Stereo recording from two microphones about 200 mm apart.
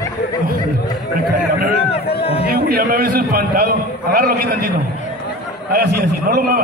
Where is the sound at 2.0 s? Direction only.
30° left (ahead or behind).